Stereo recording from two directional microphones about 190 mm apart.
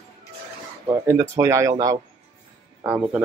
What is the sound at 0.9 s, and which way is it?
Speech, 15° right (ahead or behind).